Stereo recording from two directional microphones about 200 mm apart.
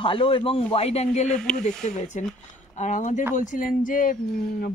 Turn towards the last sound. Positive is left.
turn(degrees=45)  # may be behind; listen again after turning